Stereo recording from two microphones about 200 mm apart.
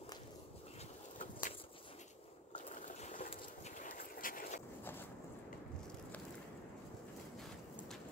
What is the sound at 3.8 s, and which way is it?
Boat, 45° left (ahead or behind).